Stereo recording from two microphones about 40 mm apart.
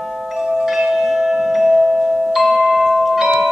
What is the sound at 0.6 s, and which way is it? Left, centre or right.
Tubular bells, centre.